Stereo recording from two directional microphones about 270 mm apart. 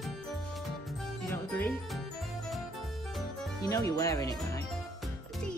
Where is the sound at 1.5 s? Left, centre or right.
Centre.